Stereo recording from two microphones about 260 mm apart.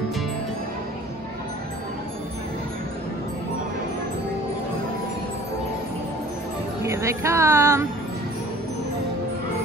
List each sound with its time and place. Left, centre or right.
6.8 s music: centre